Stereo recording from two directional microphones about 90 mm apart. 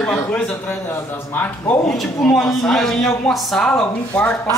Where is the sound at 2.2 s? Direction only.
5° left (ahead or behind).